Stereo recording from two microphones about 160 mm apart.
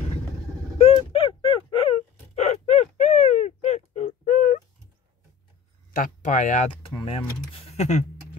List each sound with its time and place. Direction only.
0.7 s gasp: 35° left (ahead or behind); by 4.6 s 55° left (ahead or behind)
5.9 s speech: 55° left (ahead or behind)
6.7 s speech: 35° left (ahead or behind)